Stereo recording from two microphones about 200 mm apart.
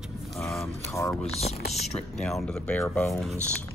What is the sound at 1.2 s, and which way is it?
Speech, 30° left (ahead or behind).